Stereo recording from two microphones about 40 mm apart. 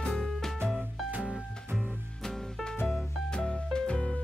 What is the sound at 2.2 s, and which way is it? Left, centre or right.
Music, centre.